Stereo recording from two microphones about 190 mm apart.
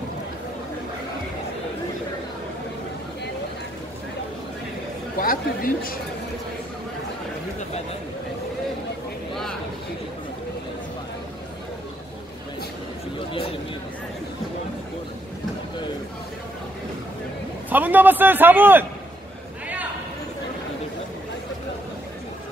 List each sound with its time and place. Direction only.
5.2 s speech: 50° left (ahead or behind)
13.3 s a sound: 30° left (ahead or behind)
17.6 s a man's voice: 10° right (ahead or behind)